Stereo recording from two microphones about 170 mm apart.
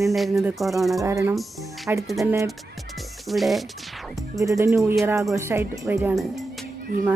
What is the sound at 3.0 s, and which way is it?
Music, centre (ahead or behind).